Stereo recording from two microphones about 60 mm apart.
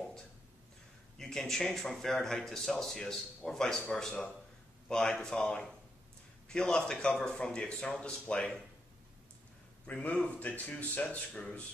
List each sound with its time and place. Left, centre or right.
1.1 s speech: centre
9.8 s speech: left